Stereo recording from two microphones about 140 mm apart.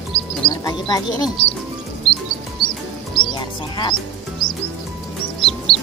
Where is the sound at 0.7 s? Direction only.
30° left (ahead or behind).